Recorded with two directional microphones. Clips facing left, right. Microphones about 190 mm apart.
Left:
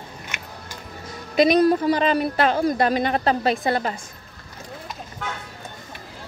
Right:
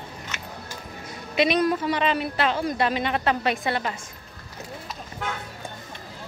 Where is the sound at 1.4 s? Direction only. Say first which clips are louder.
Left 5 dB; 40° left (ahead or behind).